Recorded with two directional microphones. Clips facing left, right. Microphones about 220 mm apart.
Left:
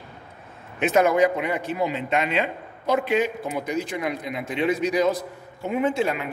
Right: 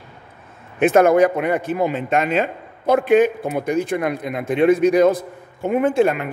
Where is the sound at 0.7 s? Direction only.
50° right (ahead or behind).